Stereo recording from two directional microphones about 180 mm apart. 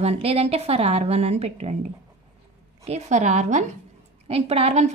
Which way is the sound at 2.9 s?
40° right (ahead or behind).